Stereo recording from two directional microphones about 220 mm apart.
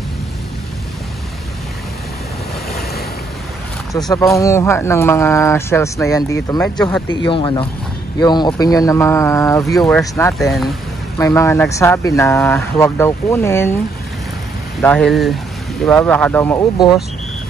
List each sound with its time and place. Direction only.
4.1 s speech: 15° left (ahead or behind)
10.4 s speech: centre (ahead or behind)
11.1 s speech: 10° left (ahead or behind)
14.8 s speech: 5° left (ahead or behind)